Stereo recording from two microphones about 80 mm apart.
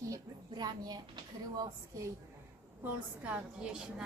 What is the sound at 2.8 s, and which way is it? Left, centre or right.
A woman's voice, centre.